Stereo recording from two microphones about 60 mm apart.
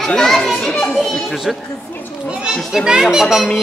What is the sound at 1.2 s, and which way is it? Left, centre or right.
Speech, centre.